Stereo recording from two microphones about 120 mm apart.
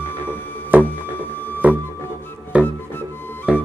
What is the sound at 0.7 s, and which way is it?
Music, 15° right (ahead or behind).